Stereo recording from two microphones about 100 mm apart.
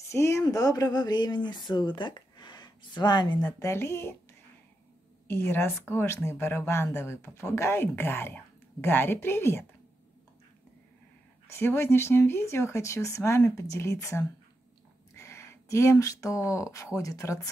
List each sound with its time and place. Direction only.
0.1 s speech: 30° left (ahead or behind); by 3.4 s 45° left (ahead or behind)
3.5 s speech: 30° left (ahead or behind)
5.3 s speech: 25° left (ahead or behind)
11.4 s speech: 25° left (ahead or behind)